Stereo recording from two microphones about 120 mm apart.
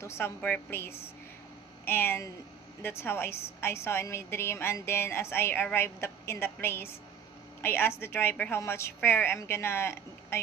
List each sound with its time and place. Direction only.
0.0 s a woman's voice: 20° left (ahead or behind)